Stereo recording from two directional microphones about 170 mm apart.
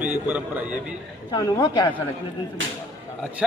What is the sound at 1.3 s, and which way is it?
Speech, 25° left (ahead or behind).